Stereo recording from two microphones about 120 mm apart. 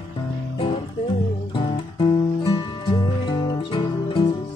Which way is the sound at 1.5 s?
45° left (ahead or behind).